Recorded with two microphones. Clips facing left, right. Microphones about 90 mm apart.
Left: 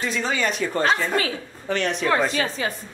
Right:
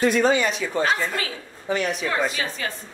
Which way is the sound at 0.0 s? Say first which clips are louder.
Right 8 dB; 55° right (ahead or behind).